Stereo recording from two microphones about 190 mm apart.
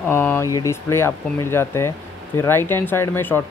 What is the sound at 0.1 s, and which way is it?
Speech, 10° left (ahead or behind).